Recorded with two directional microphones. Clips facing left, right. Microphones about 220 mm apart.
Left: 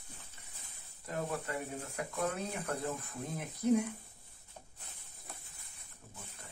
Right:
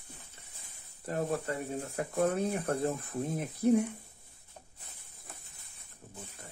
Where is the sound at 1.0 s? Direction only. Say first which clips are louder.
Right 5 dB; 35° right (ahead or behind).